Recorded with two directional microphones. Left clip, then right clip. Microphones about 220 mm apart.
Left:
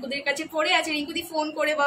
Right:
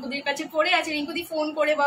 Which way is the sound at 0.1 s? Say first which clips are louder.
Even; 15° left (ahead or behind).